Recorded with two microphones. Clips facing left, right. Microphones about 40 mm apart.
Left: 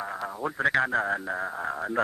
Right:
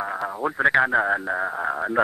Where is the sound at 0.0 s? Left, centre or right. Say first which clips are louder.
Right 5 dB; centre.